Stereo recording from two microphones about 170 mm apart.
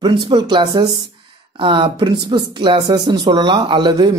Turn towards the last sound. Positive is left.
turn(degrees=-25)  # may be behind; listen again after turning